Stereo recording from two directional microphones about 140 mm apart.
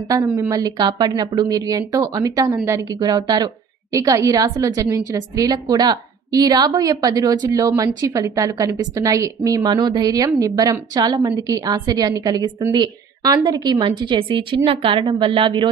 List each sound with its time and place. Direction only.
0.4 s a woman's voice: 25° right (ahead or behind)